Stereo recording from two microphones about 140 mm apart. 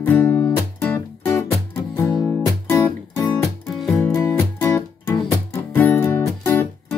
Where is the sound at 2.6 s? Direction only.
20° left (ahead or behind).